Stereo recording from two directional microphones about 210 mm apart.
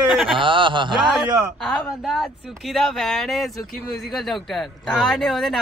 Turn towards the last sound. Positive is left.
turn(degrees=0)  # may be behind; listen again after turning